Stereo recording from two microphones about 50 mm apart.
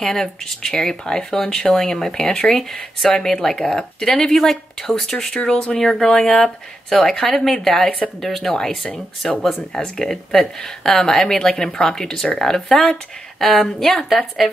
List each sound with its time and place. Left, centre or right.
0.0 s a woman's voice: centre